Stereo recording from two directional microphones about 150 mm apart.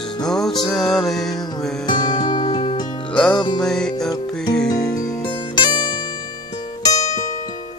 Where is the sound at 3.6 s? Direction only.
5° left (ahead or behind).